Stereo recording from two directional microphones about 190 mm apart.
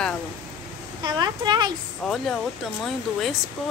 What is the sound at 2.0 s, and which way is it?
Speech, centre (ahead or behind).